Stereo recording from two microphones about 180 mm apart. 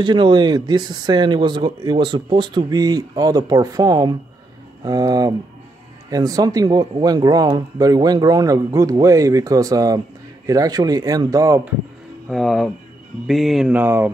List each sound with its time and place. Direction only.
0.0 s speech: 25° right (ahead or behind)
12.3 s speech: centre (ahead or behind)